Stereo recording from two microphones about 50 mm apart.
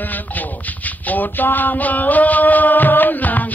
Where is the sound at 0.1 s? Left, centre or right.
Left.